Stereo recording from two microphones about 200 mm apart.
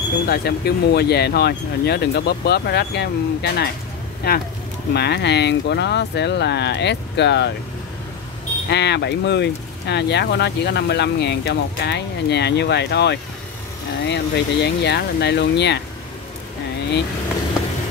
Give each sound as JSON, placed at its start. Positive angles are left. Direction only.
{"t": 0.3, "sound": "speech", "side_deg": 55}
{"t": 8.6, "sound": "speech", "side_deg": 55}